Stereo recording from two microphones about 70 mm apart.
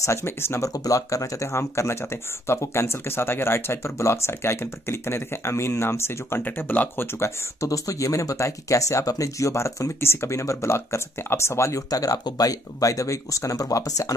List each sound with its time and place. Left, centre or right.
0.0 s speech: left
0.6 s speech: left
6.4 s speech: left
7.2 s speech: left